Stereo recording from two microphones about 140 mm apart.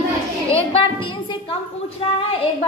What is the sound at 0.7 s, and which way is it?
A woman's voice, 40° left (ahead or behind).